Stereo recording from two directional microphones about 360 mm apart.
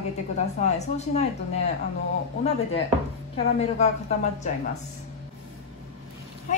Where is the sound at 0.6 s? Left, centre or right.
Centre.